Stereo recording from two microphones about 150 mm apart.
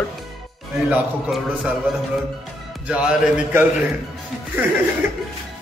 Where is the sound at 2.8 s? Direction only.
5° right (ahead or behind).